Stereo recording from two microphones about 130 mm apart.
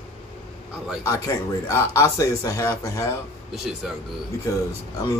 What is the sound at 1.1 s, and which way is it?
Speech, 25° left (ahead or behind).